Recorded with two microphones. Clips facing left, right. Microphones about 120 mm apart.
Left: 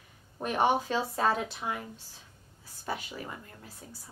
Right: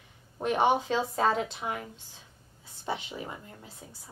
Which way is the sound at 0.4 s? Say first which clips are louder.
Right 2 dB; 20° right (ahead or behind).